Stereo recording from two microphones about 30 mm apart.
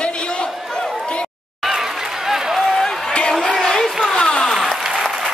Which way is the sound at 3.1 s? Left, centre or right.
Left.